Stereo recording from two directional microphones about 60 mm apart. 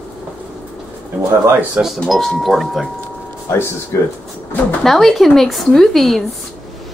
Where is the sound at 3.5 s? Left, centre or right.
Left.